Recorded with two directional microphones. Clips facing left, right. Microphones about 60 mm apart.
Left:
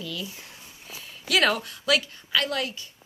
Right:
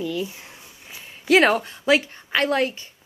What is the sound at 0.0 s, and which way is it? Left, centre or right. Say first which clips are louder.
Speech: right 8 dB; right.